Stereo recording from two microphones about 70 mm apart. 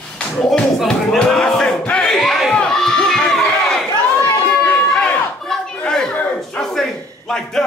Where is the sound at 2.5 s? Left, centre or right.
Centre.